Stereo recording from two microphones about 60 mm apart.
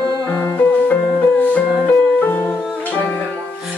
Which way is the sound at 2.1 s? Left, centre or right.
Left.